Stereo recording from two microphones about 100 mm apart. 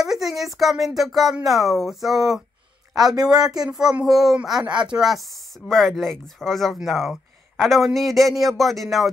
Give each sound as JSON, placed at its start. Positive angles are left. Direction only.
{"t": 0.0, "sound": "speech", "side_deg": -5}
{"t": 3.2, "sound": "speech", "side_deg": -40}
{"t": 3.7, "sound": "speech", "side_deg": -5}